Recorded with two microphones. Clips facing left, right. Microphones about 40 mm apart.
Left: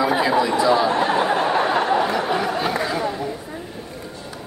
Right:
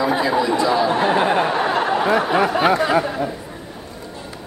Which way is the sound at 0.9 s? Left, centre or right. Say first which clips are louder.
Right 2 dB; centre.